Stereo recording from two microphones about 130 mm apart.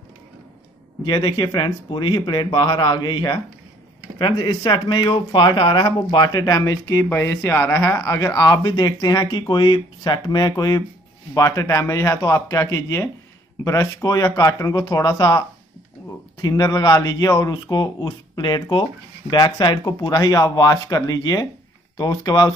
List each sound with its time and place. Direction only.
1.0 s speech: 35° left (ahead or behind)